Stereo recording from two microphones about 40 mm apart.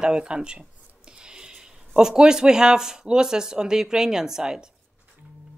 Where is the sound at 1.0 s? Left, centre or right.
Right.